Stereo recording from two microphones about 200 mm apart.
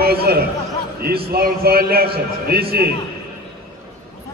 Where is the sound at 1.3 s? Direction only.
50° right (ahead or behind).